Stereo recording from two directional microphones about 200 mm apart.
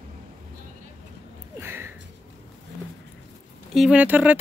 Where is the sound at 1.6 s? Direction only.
10° right (ahead or behind).